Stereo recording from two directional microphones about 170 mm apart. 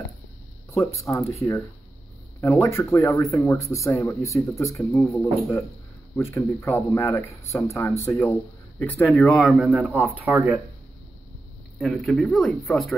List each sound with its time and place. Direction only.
1.0 s a man's voice: 15° left (ahead or behind); by 10.6 s 10° right (ahead or behind)
11.8 s a man's voice: centre (ahead or behind)